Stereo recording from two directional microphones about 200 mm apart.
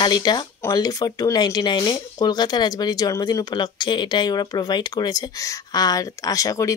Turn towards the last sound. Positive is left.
turn(degrees=15)  # may be behind; listen again after turning